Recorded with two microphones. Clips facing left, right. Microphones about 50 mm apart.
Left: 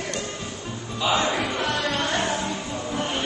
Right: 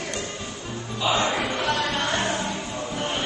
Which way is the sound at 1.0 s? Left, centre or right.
Centre.